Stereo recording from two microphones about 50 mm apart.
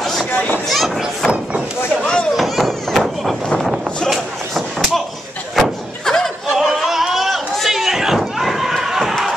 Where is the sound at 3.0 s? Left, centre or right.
Centre.